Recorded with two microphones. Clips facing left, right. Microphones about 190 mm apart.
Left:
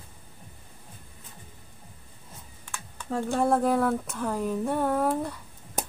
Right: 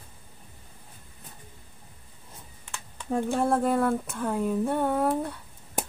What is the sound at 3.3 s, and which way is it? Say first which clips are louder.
Speech: left 2 dB; centre (ahead or behind).